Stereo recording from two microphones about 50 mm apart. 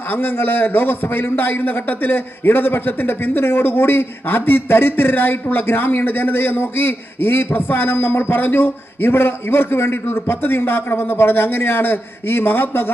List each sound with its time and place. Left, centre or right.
0.1 s a man's voice: left